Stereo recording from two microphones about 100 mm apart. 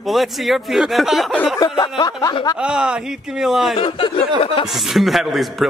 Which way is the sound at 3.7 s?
65° left (ahead or behind).